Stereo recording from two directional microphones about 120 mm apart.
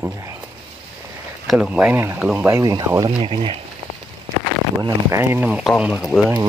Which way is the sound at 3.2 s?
45° right (ahead or behind).